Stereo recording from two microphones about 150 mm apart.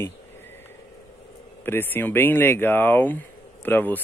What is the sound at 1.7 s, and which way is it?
Speech, 15° left (ahead or behind).